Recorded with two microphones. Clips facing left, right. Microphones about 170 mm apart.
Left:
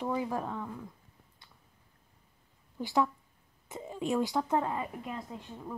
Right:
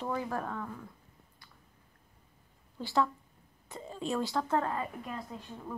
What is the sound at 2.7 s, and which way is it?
Speech, 15° left (ahead or behind).